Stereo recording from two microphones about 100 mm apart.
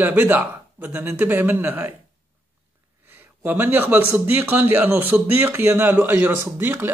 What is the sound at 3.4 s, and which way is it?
Speech, 20° right (ahead or behind).